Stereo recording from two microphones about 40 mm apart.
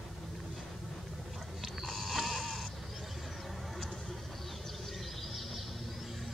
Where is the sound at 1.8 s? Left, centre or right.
Centre.